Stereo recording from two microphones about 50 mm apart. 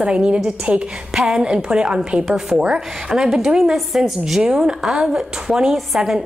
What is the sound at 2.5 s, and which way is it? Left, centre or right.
A woman's voice, centre.